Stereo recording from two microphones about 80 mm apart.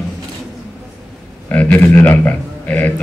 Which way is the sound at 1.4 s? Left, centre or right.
Left.